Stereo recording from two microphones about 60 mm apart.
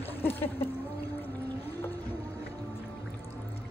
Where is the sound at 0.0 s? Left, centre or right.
Left.